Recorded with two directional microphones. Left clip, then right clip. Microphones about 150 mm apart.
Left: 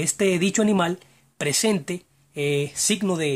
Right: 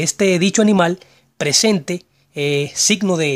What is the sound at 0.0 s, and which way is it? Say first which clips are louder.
Speech: right 6 dB; 35° right (ahead or behind).